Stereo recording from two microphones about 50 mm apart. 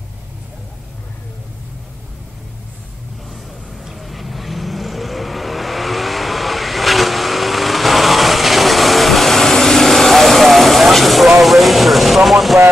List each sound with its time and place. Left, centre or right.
3.8 s vehicle: centre